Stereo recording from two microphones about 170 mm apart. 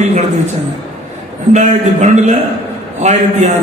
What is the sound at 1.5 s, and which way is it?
A man's voice, 45° right (ahead or behind).